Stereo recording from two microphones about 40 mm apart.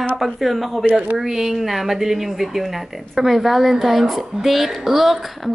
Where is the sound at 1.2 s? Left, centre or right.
Centre.